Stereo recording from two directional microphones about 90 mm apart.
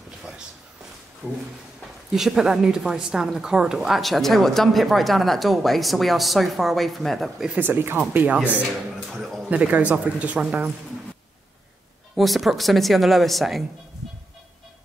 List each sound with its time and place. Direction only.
1.2 s speech: 5° left (ahead or behind)
2.1 s speech: 5° right (ahead or behind)
7.5 s speech: 25° right (ahead or behind)
9.1 s speech: centre (ahead or behind)
9.5 s speech: 15° right (ahead or behind)
12.2 s speech: centre (ahead or behind)